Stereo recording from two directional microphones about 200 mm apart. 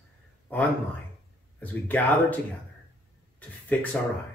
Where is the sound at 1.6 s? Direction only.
5° left (ahead or behind).